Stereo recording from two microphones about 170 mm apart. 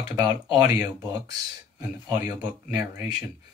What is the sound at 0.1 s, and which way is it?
Speech, 15° right (ahead or behind).